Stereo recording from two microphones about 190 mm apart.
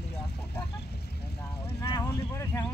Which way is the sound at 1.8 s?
20° left (ahead or behind).